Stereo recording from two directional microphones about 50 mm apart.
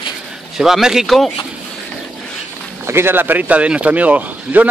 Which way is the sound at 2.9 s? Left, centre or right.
Right.